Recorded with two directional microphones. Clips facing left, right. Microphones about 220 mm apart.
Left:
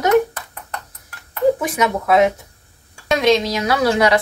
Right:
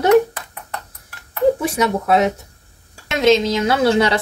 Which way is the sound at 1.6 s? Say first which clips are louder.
Right 1 dB; 30° right (ahead or behind).